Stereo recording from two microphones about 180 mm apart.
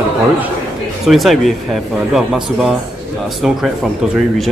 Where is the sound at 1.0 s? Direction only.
Centre (ahead or behind).